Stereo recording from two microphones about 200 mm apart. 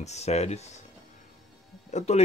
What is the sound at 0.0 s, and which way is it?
Speech, 35° left (ahead or behind).